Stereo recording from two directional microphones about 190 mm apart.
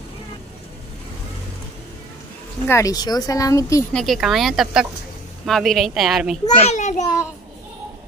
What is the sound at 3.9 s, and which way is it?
A child's voice, centre (ahead or behind).